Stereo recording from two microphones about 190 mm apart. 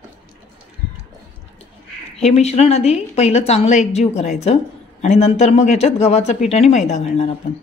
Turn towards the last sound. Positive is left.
turn(degrees=35)  # may be behind; listen again after turning